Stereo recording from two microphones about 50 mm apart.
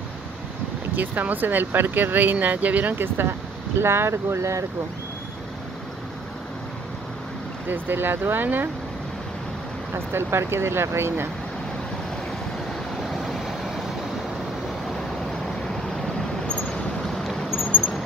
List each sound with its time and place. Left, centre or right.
0.9 s speech: right
3.8 s speech: right
7.6 s speech: right
9.9 s speech: right
15.6 s vehicle: centre
17.5 s vehicle: centre